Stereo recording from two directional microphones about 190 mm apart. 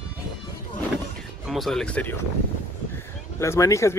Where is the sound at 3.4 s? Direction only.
15° left (ahead or behind).